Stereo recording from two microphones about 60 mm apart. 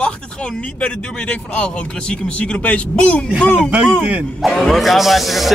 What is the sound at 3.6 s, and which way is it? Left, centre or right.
Speech, right.